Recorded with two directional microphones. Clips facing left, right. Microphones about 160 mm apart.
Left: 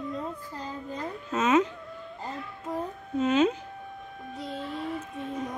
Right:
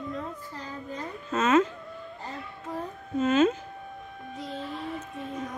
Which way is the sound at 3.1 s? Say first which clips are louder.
Right 1 dB; 15° left (ahead or behind).